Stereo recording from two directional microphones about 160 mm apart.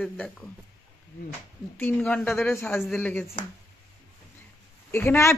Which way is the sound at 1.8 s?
5° left (ahead or behind).